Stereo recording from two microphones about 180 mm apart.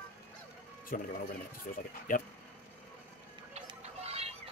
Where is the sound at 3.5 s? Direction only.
35° right (ahead or behind).